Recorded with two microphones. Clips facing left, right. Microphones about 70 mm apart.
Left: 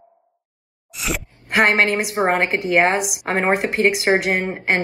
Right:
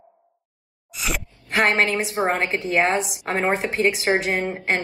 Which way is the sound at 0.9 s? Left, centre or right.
Centre.